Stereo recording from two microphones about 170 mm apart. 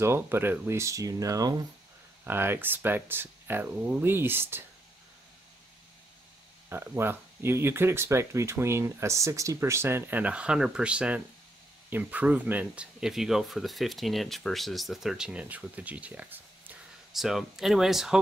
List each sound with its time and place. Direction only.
0.0 s speech: 15° right (ahead or behind)
6.7 s speech: 10° right (ahead or behind)